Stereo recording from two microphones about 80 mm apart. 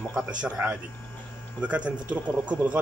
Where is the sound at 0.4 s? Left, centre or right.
Centre.